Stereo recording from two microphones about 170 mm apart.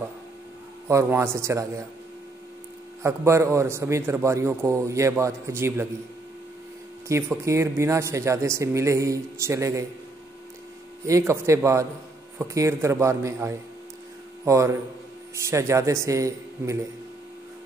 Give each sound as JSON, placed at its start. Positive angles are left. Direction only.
{"t": 0.8, "sound": "a man's voice", "side_deg": -15}
{"t": 3.0, "sound": "a man's voice", "side_deg": -15}
{"t": 7.1, "sound": "a man's voice", "side_deg": -15}
{"t": 11.1, "sound": "a man's voice", "side_deg": -15}